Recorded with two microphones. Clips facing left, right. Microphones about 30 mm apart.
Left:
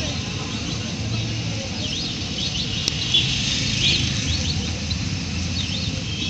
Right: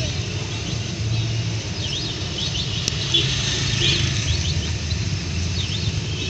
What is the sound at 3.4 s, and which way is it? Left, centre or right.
Bird, left.